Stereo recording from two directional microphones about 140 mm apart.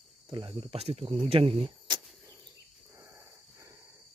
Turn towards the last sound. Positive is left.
turn(degrees=-20)  # may be behind; listen again after turning